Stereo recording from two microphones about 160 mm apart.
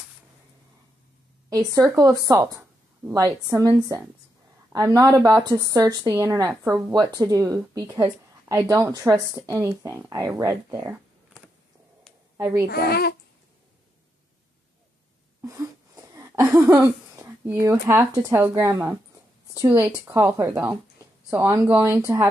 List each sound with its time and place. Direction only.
1.5 s a woman's voice: 20° right (ahead or behind)
12.4 s a woman's voice: 20° right (ahead or behind)
12.6 s speech: 80° left
15.4 s wheeze: 20° right (ahead or behind)
16.2 s a woman's voice: 20° right (ahead or behind)